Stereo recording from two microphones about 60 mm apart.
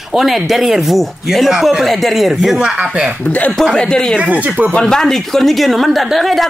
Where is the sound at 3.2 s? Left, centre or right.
Left.